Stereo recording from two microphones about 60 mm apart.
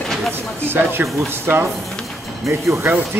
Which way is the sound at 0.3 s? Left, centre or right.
Right.